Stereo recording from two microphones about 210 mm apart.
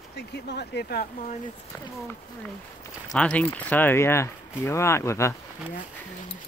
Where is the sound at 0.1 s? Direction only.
50° left (ahead or behind).